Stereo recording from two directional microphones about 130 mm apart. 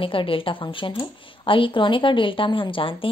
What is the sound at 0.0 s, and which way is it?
A woman's voice, 45° left (ahead or behind).